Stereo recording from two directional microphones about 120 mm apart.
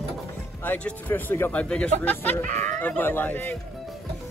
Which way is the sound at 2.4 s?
90° right.